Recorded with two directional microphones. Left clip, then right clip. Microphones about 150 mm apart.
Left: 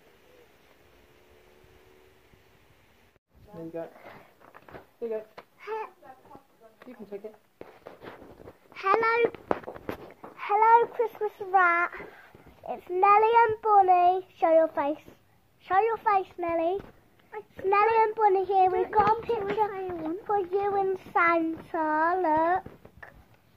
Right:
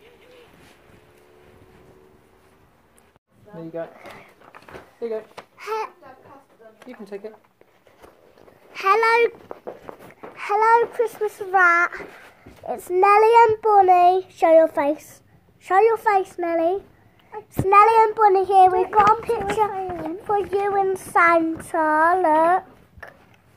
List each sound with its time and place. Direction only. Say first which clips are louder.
5.0 s a child's voice: right 5 dB; 10° right (ahead or behind)
5.6 s babbling: right 8 dB; 25° right (ahead or behind)
8.7 s a child's voice: right 7 dB; 20° right (ahead or behind)
10.3 s a child's voice: right 3 dB; 10° right (ahead or behind)